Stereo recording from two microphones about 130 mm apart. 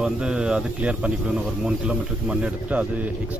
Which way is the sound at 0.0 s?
5° right (ahead or behind).